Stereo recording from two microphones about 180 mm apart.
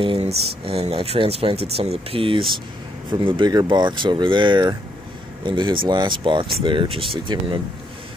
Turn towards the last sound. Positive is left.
turn(degrees=-30)  # may be behind; listen again after turning